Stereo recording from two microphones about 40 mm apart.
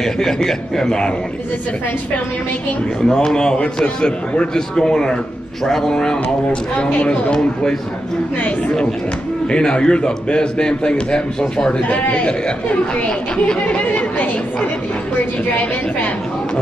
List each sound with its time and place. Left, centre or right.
0.0 s a man's voice: centre
3.3 s a man's voice: left
9.5 s a man's voice: left
12.1 s speech: left
13.7 s speech: left